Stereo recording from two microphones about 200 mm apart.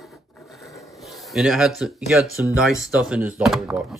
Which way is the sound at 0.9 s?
Centre (ahead or behind).